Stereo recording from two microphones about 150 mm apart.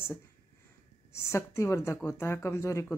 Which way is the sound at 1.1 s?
20° left (ahead or behind).